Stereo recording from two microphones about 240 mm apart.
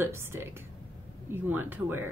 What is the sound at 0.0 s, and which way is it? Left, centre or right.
Speech, centre.